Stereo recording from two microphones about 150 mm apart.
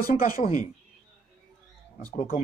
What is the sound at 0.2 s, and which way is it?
Speech, 50° left (ahead or behind).